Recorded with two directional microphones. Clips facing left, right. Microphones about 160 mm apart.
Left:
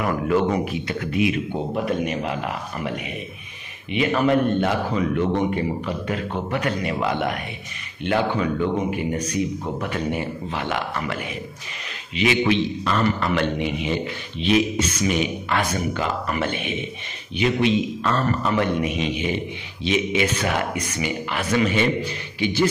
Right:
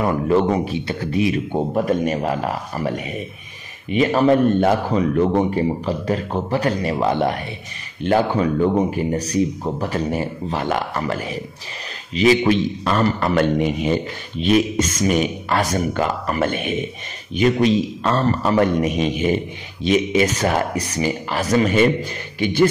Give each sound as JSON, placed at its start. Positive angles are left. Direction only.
{"t": 0.0, "sound": "a man's voice", "side_deg": -30}
{"t": 3.9, "sound": "a man's voice", "side_deg": -35}